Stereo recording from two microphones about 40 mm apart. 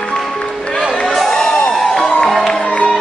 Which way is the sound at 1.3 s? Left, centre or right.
Centre.